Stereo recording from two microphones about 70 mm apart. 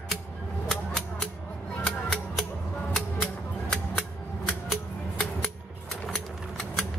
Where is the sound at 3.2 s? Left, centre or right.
Centre.